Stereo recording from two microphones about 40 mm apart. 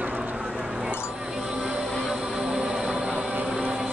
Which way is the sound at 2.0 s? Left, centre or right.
Centre.